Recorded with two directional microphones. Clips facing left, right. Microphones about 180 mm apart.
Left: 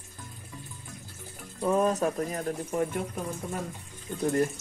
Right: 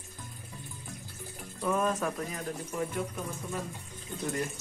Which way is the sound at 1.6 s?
30° left (ahead or behind).